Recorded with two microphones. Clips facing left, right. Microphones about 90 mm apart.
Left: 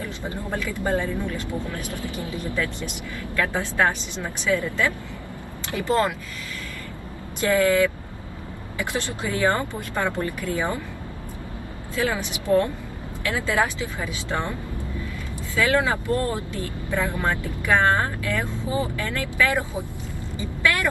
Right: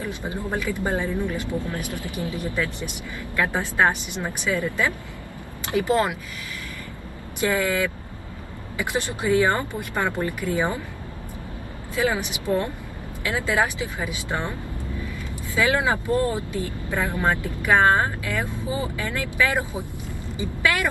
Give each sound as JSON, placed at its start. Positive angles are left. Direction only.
{"t": 0.0, "sound": "speech", "side_deg": -20}
{"t": 7.3, "sound": "speech", "side_deg": -20}
{"t": 11.9, "sound": "speech", "side_deg": -20}
{"t": 15.5, "sound": "speech", "side_deg": -20}